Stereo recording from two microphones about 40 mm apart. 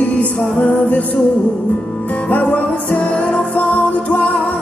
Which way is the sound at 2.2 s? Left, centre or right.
Left.